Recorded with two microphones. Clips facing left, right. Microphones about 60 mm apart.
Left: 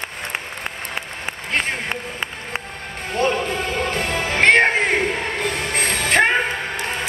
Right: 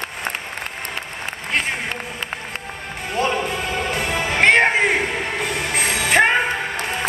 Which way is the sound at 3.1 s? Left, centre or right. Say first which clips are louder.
Left 1 dB; centre.